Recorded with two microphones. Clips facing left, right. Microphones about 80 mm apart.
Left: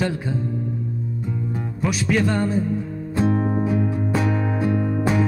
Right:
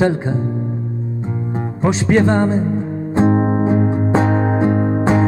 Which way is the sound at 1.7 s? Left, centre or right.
Right.